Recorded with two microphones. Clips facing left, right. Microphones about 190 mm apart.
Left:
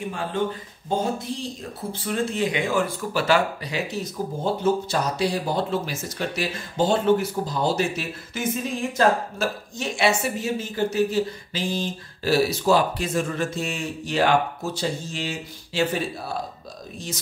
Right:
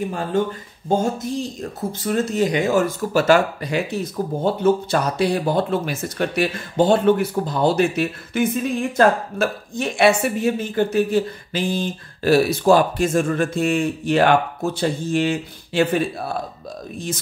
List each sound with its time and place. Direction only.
0.3 s speech: 45° right (ahead or behind)